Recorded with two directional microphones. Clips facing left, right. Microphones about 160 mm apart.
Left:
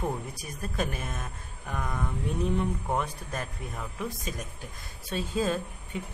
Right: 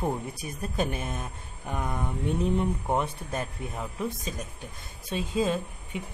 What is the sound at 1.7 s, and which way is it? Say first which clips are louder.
Speech: right 2 dB; 25° right (ahead or behind).